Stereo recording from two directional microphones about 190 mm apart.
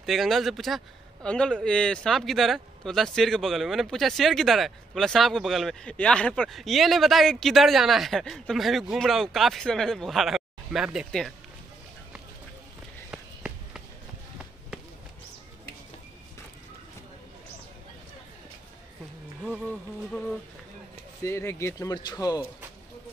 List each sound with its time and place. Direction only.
0.0 s speech: centre (ahead or behind)
13.1 s a sound: 5° right (ahead or behind)
20.1 s speech: centre (ahead or behind)
21.2 s a man's voice: 15° left (ahead or behind)